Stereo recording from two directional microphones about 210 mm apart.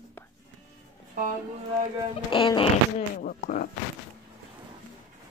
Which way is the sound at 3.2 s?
45° left (ahead or behind).